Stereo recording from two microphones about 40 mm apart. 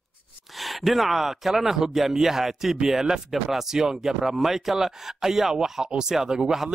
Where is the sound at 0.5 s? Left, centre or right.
Centre.